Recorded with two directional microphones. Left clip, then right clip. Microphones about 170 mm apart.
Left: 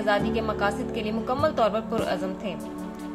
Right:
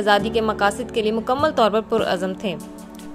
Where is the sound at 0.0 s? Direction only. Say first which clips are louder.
Right 6 dB; 50° right (ahead or behind).